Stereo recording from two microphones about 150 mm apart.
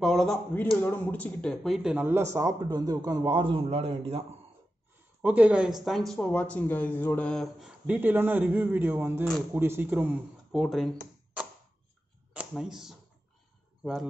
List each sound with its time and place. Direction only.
0.0 s speech: centre (ahead or behind)
0.7 s a man's voice: 15° left (ahead or behind); by 4.2 s 40° right (ahead or behind)
5.2 s speech: 10° right (ahead or behind)
10.5 s a sound: centre (ahead or behind)
12.4 s speech: 5° right (ahead or behind)